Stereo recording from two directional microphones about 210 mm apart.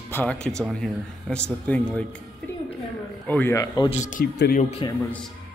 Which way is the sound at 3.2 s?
10° left (ahead or behind).